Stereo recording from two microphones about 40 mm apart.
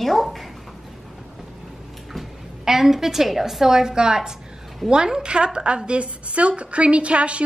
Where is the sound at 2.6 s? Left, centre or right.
Centre.